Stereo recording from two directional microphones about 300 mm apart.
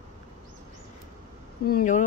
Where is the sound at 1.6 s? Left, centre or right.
Left.